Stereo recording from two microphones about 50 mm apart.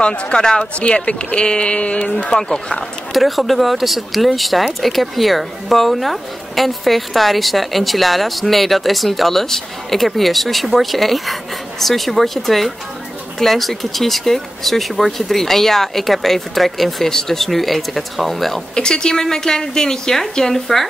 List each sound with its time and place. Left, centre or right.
0.0 s speech: centre
3.1 s speech: centre
18.8 s a woman's voice: centre